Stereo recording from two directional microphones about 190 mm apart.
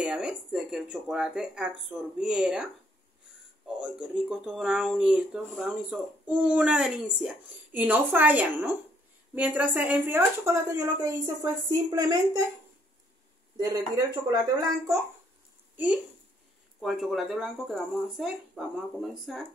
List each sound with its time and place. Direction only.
0.0 s speech: 5° right (ahead or behind)
13.6 s a woman's voice: 20° right (ahead or behind)
15.7 s speech: 10° right (ahead or behind)